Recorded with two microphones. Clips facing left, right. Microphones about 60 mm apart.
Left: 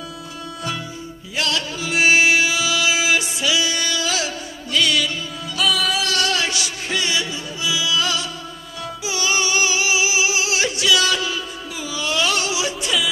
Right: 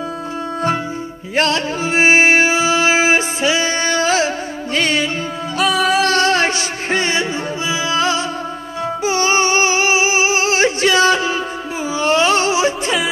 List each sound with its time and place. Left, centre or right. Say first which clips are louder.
1.3 s music: right 7 dB; right
5.6 s music: right 5 dB; right
6.0 s music: right 7 dB; right